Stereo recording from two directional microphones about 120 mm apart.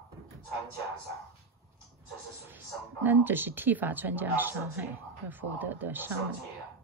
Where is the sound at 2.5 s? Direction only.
15° right (ahead or behind).